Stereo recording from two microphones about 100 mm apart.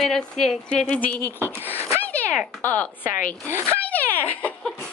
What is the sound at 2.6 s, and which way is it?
Speech, 15° left (ahead or behind).